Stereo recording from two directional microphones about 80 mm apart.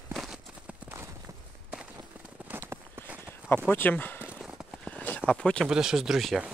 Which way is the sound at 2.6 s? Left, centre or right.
Right.